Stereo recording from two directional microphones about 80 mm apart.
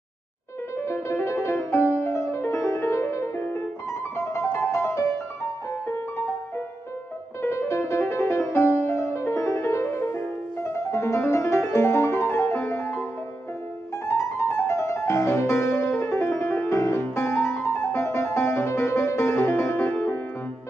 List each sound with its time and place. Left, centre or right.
0.8 s music: left
7.4 s music: left
14.0 s music: left
19.9 s music: centre